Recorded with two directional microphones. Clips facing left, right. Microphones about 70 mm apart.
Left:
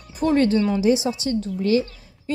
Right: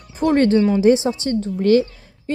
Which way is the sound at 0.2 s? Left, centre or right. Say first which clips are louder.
Right 3 dB; right.